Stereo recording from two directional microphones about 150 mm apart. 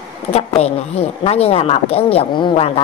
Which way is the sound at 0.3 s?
40° left (ahead or behind).